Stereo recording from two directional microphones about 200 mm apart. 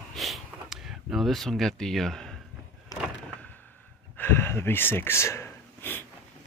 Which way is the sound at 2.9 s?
20° left (ahead or behind).